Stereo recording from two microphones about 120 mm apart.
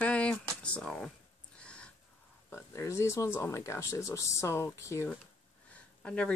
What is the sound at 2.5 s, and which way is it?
Speech, 25° left (ahead or behind).